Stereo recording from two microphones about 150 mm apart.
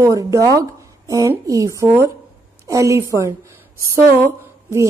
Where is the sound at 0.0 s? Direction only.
20° right (ahead or behind).